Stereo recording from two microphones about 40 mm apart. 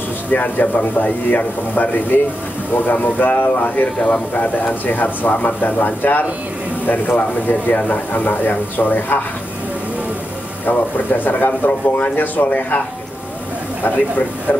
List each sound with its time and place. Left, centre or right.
0.3 s speech: left
3.3 s speech: left
10.6 s speech: left
13.9 s speech: left